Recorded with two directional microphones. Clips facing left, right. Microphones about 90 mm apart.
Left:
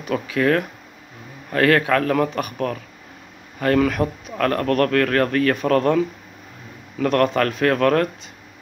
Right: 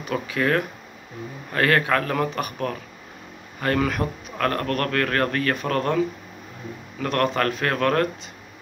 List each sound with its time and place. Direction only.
0.1 s a man's voice: 15° right (ahead or behind)
7.0 s a man's voice: 15° right (ahead or behind)